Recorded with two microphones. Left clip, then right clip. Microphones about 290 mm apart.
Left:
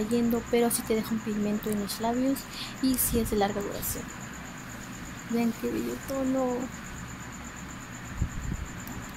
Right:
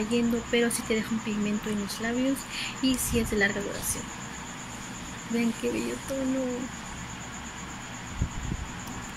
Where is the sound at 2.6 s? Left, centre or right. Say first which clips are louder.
Right 2 dB; centre.